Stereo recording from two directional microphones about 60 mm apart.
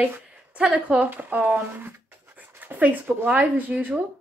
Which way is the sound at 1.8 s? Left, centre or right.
Right.